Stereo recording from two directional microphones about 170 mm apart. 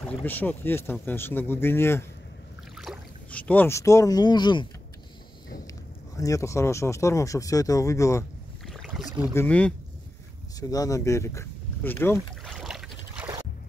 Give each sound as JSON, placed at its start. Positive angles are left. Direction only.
{"t": 0.2, "sound": "speech", "side_deg": 10}
{"t": 2.7, "sound": "speech", "side_deg": 0}
{"t": 6.1, "sound": "speech", "side_deg": 20}
{"t": 8.6, "sound": "boat", "side_deg": 0}
{"t": 9.3, "sound": "speech", "side_deg": 10}
{"t": 10.6, "sound": "speech", "side_deg": 20}
{"t": 12.4, "sound": "boat", "side_deg": -5}